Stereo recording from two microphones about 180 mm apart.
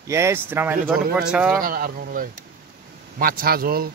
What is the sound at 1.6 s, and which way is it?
Speech, 55° right (ahead or behind).